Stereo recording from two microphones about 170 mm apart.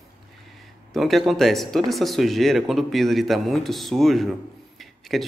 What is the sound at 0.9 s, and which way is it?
Speech, centre (ahead or behind).